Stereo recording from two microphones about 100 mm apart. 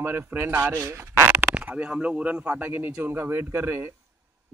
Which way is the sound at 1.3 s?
15° right (ahead or behind).